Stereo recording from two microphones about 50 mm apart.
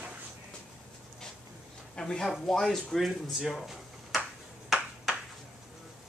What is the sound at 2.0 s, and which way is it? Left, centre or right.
Speech, centre.